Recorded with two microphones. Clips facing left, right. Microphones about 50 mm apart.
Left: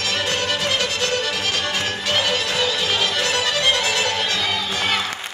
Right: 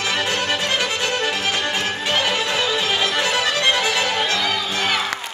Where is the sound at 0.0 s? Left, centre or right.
Centre.